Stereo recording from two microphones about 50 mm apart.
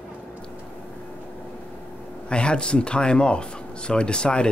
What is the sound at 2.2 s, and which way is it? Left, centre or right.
Speech, centre.